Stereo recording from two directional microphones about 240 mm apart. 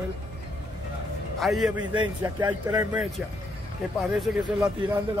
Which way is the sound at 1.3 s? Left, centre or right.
Centre.